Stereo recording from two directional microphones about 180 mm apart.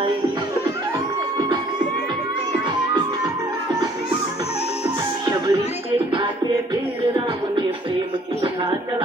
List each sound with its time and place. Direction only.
5.2 s music: 25° right (ahead or behind)